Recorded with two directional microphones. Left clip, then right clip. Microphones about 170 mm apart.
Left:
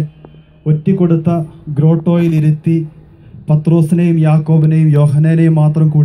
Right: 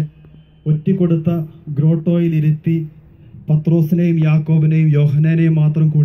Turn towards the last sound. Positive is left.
turn(degrees=35)  # may be behind; listen again after turning